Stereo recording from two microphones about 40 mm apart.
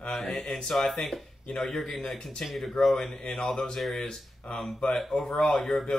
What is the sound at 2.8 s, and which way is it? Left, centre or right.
A man's voice, centre.